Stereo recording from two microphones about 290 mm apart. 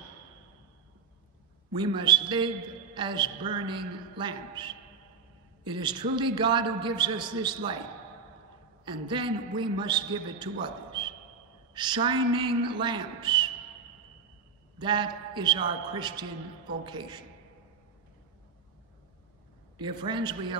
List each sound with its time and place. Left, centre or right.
1.8 s a man's voice: centre
8.8 s a man's voice: centre
14.8 s a man's voice: centre
19.8 s a man's voice: centre